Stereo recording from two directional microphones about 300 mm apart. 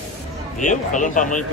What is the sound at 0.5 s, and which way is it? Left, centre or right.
Speech, left.